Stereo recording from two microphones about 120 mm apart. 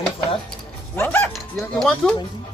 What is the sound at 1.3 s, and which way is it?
Speech, centre (ahead or behind).